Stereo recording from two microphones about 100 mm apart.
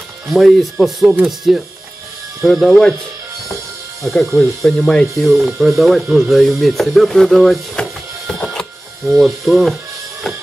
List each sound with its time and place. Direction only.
0.3 s speech: centre (ahead or behind)
4.0 s speech: 5° left (ahead or behind)
9.0 s speech: 5° right (ahead or behind)